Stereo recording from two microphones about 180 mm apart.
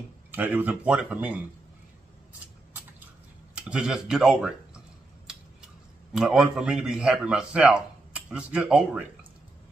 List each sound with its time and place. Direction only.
0.3 s speech: 10° right (ahead or behind)
3.5 s a sound: 5° right (ahead or behind)
6.1 s a man's voice: 5° right (ahead or behind)